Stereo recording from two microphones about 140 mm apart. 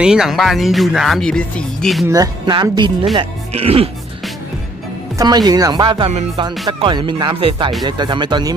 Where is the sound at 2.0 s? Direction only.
25° right (ahead or behind).